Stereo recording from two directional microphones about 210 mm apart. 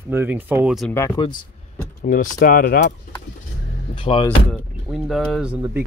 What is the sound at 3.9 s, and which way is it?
Speech, 25° left (ahead or behind).